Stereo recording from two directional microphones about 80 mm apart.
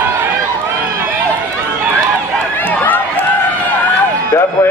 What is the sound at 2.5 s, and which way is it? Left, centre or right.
Run, left.